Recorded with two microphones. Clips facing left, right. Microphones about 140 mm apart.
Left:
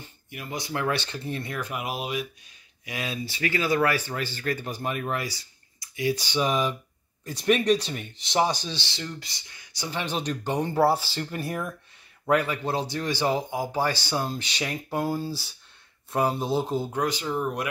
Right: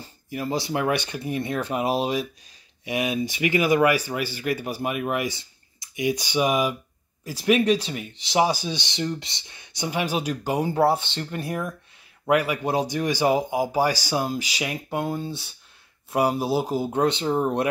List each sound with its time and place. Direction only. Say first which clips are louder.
0.0 s speech: right 10 dB; 35° right (ahead or behind)
2.8 s speech: right 8 dB; 20° right (ahead or behind); by 11.7 s centre (ahead or behind)
12.3 s speech: right 2 dB; 10° right (ahead or behind)
16.1 s speech: right 3 dB; 10° right (ahead or behind)
16.9 s speech: right 5 dB; 25° right (ahead or behind)